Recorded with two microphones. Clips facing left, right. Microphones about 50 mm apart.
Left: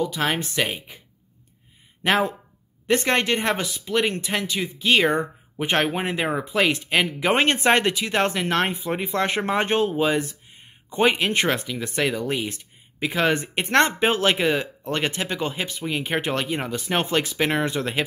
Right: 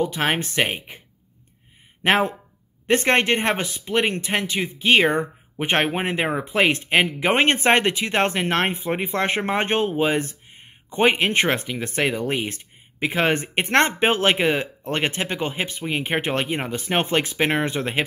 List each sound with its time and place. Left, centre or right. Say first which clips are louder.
0.0 s speech: right 2 dB; right
2.0 s speech: right 2 dB; right